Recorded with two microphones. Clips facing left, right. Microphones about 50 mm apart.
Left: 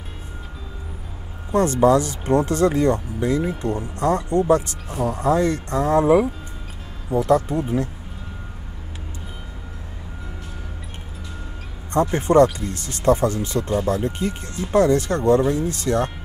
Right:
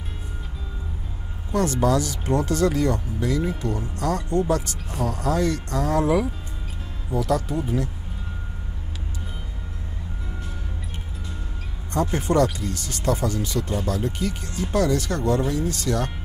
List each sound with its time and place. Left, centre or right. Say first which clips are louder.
1.5 s speech: left 5 dB; left
11.9 s speech: left 5 dB; left